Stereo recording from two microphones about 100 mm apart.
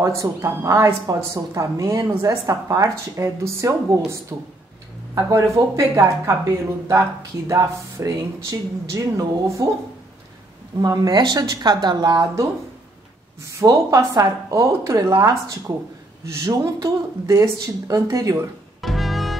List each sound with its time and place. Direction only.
0.0 s a woman's voice: 30° right (ahead or behind)
7.4 s a woman's voice: 30° right (ahead or behind)
10.8 s a woman's voice: 40° right (ahead or behind)
13.5 s a woman's voice: 35° right (ahead or behind)
18.8 s music: centre (ahead or behind)